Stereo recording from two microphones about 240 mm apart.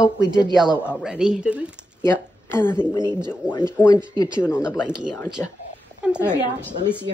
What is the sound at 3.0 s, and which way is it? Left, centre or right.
Speech, centre.